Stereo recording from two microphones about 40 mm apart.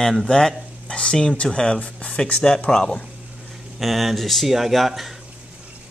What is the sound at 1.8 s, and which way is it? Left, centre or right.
Speech, left.